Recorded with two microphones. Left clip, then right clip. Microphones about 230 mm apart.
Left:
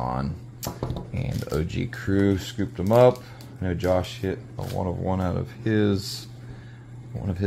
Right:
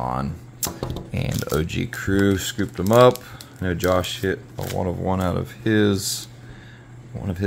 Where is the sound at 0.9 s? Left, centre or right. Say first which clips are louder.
Right 5 dB; centre.